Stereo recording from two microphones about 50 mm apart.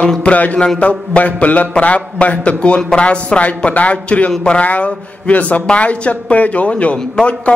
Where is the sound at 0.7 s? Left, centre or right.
Left.